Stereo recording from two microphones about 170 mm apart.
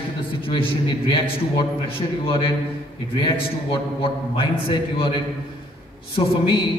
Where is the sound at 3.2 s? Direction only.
30° left (ahead or behind).